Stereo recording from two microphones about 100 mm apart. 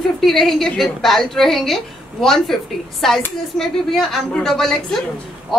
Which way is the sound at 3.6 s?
5° left (ahead or behind).